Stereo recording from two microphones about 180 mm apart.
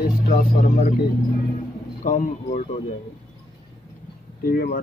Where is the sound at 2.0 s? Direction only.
45° left (ahead or behind).